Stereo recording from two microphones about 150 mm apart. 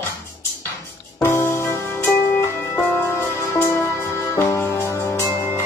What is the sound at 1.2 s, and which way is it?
Music, 15° left (ahead or behind).